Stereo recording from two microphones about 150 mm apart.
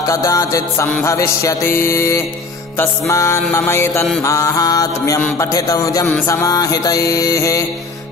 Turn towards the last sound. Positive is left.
turn(degrees=20)  # may be behind; listen again after turning